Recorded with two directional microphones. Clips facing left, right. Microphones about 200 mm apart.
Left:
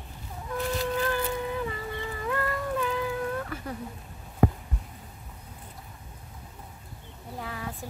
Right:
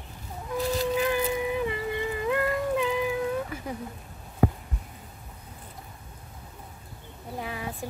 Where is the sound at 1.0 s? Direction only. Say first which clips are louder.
Right 3 dB; 15° right (ahead or behind).